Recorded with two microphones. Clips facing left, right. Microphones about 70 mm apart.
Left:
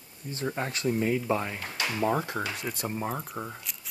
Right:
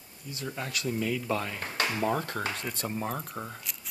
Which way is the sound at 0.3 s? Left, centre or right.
Left.